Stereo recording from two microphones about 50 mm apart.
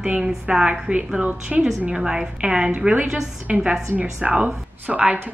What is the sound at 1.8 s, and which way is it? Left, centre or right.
Speech, centre.